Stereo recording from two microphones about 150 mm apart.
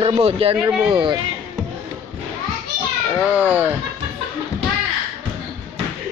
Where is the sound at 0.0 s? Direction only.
40° right (ahead or behind).